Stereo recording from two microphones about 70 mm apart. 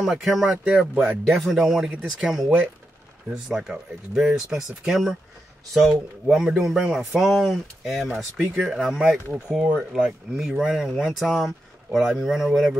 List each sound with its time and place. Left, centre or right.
0.0 s speech: centre